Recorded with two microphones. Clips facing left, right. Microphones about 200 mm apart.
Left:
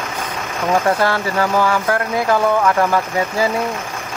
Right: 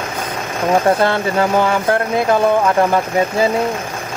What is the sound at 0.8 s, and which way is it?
Speech, 25° right (ahead or behind).